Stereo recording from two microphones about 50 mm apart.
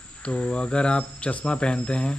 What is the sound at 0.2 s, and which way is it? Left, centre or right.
Speech, left.